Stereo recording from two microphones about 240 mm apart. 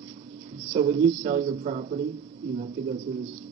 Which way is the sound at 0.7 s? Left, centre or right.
Right.